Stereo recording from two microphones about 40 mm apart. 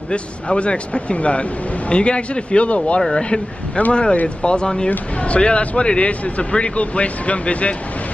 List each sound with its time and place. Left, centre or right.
0.1 s speech: left